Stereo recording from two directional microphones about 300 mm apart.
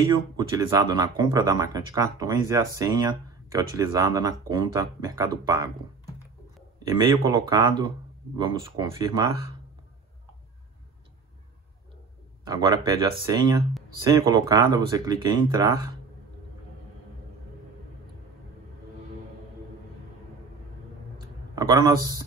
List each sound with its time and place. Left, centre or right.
0.0 s speech: centre
6.8 s speech: centre
12.4 s speech: centre
21.5 s speech: centre